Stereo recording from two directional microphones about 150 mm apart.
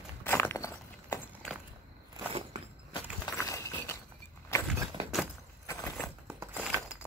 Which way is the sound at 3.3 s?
20° left (ahead or behind).